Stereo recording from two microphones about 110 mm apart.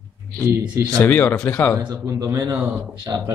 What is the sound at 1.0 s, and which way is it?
Speech, 20° left (ahead or behind).